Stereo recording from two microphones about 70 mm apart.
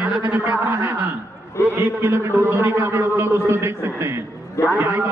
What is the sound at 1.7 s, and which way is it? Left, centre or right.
A man's voice, right.